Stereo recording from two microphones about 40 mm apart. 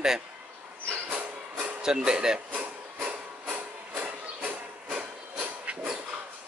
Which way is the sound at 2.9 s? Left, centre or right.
Right.